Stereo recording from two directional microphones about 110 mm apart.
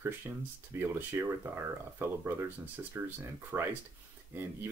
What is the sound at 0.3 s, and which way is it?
Speech, 25° right (ahead or behind).